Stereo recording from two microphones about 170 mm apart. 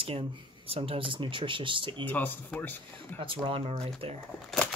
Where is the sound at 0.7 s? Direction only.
35° right (ahead or behind).